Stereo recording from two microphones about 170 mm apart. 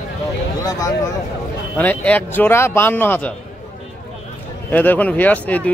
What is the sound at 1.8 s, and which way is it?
Speech, 10° left (ahead or behind).